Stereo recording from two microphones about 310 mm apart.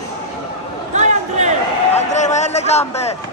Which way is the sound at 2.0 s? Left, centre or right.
Left.